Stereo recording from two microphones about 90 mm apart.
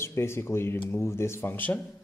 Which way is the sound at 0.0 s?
30° left (ahead or behind).